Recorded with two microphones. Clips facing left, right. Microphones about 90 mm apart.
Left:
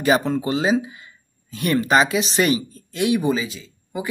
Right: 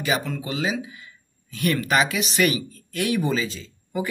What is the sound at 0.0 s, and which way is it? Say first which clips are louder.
Speech: left 7 dB; 35° left (ahead or behind).